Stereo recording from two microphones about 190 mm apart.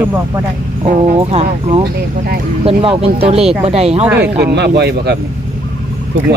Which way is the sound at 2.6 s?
30° right (ahead or behind).